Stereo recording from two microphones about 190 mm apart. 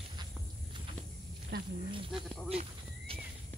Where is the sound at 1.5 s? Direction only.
60° right (ahead or behind).